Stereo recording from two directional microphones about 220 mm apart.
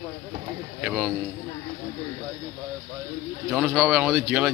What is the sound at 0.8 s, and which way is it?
Speech, 5° right (ahead or behind).